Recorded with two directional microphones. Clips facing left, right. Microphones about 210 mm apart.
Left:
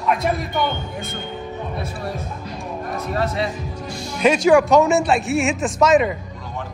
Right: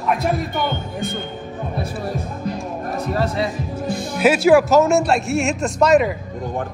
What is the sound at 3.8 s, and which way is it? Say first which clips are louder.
Music: right 9 dB; 55° right (ahead or behind).